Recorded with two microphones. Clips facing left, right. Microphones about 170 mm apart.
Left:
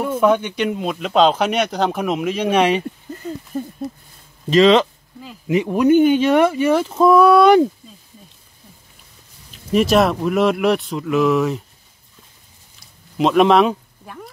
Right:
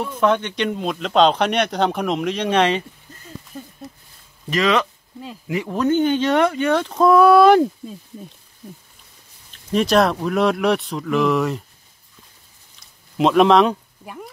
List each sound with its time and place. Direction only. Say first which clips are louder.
0.0 s speech: left 3 dB; 10° left (ahead or behind)
4.5 s speech: left 7 dB; 25° left (ahead or behind); by 7.6 s centre (ahead or behind)
9.5 s speech: left 2 dB; 5° left (ahead or behind)
13.2 s speech: even; centre (ahead or behind)